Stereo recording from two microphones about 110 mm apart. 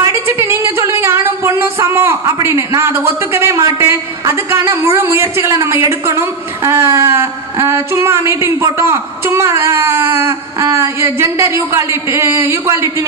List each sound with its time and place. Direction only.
0.0 s speech: 25° right (ahead or behind)